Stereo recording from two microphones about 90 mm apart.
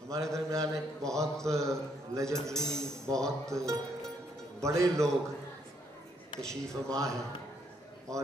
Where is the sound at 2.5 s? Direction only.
5° left (ahead or behind).